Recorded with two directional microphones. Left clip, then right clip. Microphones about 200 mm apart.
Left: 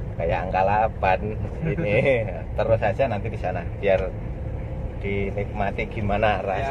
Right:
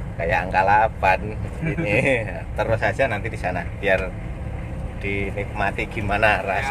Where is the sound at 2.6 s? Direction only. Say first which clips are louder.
Even; 25° right (ahead or behind).